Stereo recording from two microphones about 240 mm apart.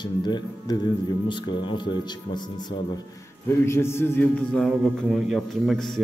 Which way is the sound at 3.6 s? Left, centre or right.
Centre.